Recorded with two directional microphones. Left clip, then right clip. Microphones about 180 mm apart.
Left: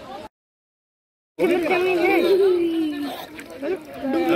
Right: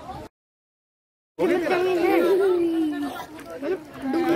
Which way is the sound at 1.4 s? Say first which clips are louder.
Left 2 dB; 15° left (ahead or behind).